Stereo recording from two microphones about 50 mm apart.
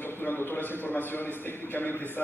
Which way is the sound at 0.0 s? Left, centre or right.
Left.